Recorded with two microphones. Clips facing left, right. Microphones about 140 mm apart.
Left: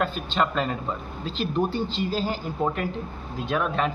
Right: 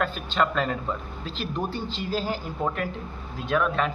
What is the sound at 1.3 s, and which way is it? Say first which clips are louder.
Speech: left 5 dB; 45° right (ahead or behind).